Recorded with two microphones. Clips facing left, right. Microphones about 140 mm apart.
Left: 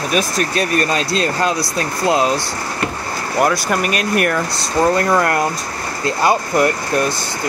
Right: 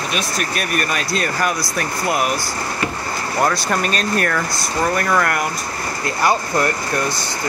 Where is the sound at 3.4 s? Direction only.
10° left (ahead or behind).